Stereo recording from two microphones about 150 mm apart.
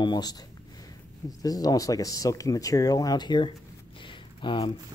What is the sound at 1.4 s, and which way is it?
Speech, 25° left (ahead or behind).